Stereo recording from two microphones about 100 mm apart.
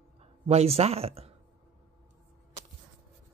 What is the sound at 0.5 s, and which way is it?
Speech, 90° right.